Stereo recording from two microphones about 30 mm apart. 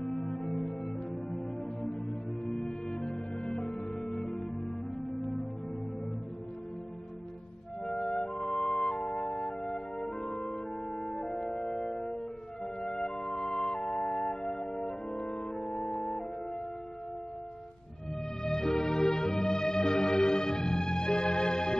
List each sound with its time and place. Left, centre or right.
0.0 s music: centre
2.4 s music: left
8.0 s music: left
18.4 s music: centre